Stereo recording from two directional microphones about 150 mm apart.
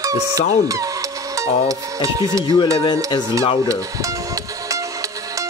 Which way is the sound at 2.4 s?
30° left (ahead or behind).